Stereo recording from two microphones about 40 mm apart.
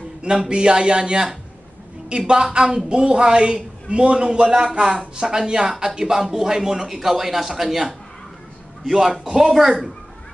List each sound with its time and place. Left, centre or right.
0.2 s a man's voice: right; by 9.9 s centre